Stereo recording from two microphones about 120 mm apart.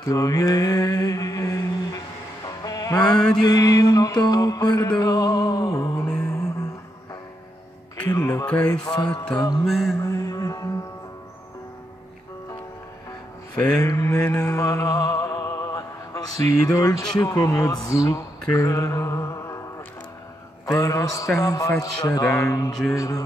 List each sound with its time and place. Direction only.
0.0 s mantra: 30° left (ahead or behind)
2.4 s music: 30° left (ahead or behind)
3.1 s mantra: 5° left (ahead or behind)
3.3 s mantra: 35° left (ahead or behind)
8.1 s mantra: 30° left (ahead or behind)
8.5 s music: 15° left (ahead or behind)
9.7 s mantra: centre (ahead or behind)
10.0 s music: 30° left (ahead or behind)
13.8 s speech: 25° left (ahead or behind)
14.3 s music: 30° left (ahead or behind)
17.2 s speech: 30° left (ahead or behind)
20.6 s speech: 30° left (ahead or behind)